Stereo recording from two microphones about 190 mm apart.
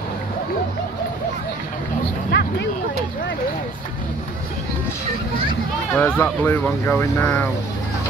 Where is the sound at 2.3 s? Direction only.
60° left (ahead or behind).